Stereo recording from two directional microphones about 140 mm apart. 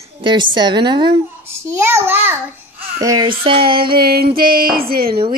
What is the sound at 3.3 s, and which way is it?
Speech, 40° right (ahead or behind).